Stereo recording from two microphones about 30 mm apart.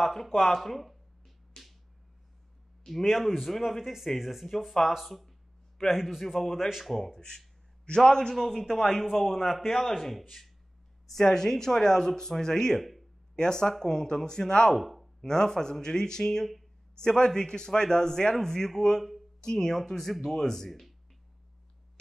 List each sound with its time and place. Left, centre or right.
0.0 s speech: centre
0.6 s a sound: centre
2.8 s speech: centre
3.8 s speech: centre
4.5 s speech: centre
7.1 s speech: centre
8.4 s speech: centre
11.1 s speech: centre
14.8 s a sound: centre
15.2 s speech: left